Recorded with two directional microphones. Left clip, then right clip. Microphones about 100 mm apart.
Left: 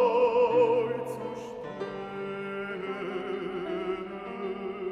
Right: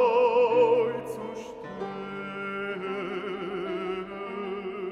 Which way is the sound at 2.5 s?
40° right (ahead or behind).